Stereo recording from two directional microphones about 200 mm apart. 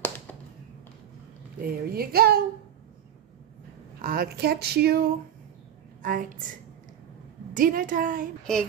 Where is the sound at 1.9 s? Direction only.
50° right (ahead or behind).